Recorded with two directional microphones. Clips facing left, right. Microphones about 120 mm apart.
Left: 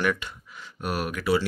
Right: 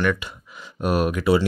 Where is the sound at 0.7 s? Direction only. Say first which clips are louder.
Right 8 dB; 20° right (ahead or behind).